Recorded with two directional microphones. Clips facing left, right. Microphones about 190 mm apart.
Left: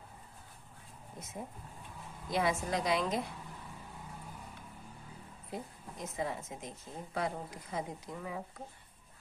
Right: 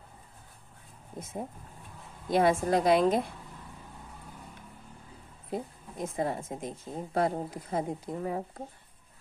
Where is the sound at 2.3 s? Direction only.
55° right (ahead or behind).